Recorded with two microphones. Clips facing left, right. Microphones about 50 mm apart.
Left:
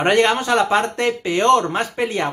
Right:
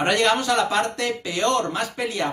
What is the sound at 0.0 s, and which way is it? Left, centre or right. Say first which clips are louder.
Speech: left 4 dB; left.